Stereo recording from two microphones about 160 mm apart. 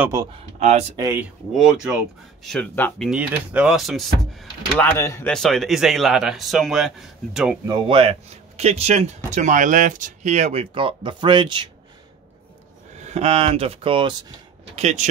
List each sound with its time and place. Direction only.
0.6 s speech: 45° right (ahead or behind)
0.9 s speech: 20° right (ahead or behind)
1.5 s speech: 5° right (ahead or behind)
2.4 s speech: 5° left (ahead or behind)
3.1 s speech: 10° right (ahead or behind)
4.8 s speech: 15° left (ahead or behind)
5.3 s speech: centre (ahead or behind)
7.6 s a man's voice: 30° right (ahead or behind)
12.9 s speech: 45° right (ahead or behind)
14.8 s speech: 45° right (ahead or behind)